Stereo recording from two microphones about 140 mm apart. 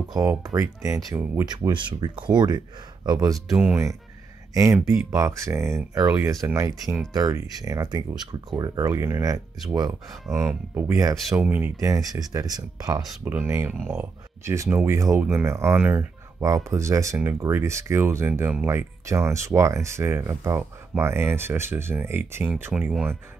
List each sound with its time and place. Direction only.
0.2 s speech: 20° right (ahead or behind)
1.5 s speech: 35° right (ahead or behind); by 3.9 s 15° right (ahead or behind)
5.1 s speech: 20° right (ahead or behind)
10.2 s speech: centre (ahead or behind); by 13.0 s 25° right (ahead or behind)
13.2 s speech: 10° right (ahead or behind)